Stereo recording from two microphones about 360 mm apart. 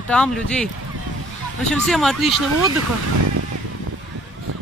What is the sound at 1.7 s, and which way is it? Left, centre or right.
Speech, centre.